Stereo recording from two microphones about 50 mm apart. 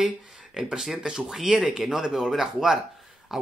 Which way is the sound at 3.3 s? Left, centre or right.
Centre.